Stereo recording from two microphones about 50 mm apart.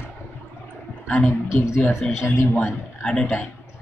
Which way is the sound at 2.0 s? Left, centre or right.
Centre.